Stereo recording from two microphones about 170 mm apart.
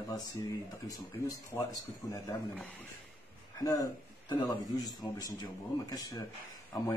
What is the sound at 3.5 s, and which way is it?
A man's voice, 20° left (ahead or behind).